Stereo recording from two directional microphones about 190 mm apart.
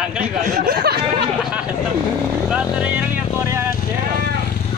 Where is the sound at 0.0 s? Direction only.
5° right (ahead or behind).